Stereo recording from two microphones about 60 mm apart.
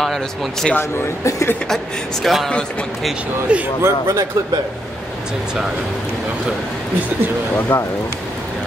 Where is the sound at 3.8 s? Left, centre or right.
Right.